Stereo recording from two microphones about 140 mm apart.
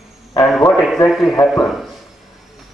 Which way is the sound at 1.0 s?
Centre (ahead or behind).